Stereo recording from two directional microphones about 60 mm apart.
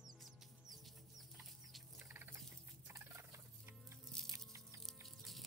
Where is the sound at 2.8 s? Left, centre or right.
Right.